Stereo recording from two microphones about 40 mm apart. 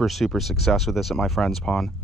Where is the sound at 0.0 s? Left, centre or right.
Centre.